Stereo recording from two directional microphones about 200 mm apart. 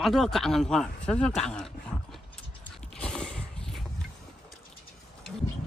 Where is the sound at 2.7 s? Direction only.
5° left (ahead or behind).